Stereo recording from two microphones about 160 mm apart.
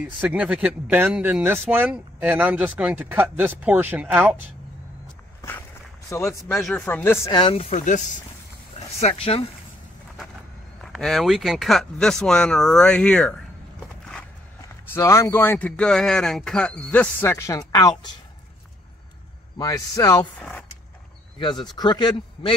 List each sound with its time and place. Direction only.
0.0 s speech: 5° right (ahead or behind)
6.0 s speech: 20° left (ahead or behind)
7.2 s speech: 30° left (ahead or behind)
7.7 s speech: 50° left (ahead or behind)
8.7 s speech: 40° left (ahead or behind)
10.9 s speech: centre (ahead or behind)
14.9 s speech: 15° left (ahead or behind)
19.6 s speech: 20° left (ahead or behind)
20.3 s speech: 5° left (ahead or behind)
21.4 s speech: 30° left (ahead or behind)